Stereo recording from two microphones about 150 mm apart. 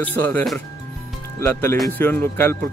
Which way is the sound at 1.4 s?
15° left (ahead or behind).